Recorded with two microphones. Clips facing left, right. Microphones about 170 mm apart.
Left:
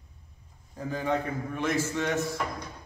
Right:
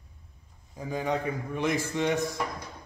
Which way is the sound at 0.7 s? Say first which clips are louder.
Left 1 dB; 15° right (ahead or behind).